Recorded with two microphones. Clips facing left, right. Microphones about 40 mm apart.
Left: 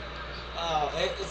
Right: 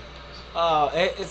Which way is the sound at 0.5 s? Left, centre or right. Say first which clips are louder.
Right 8 dB; right.